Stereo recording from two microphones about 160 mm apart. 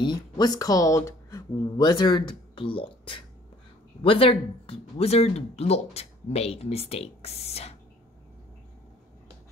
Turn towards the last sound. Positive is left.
turn(degrees=40)  # may be behind; listen again after turning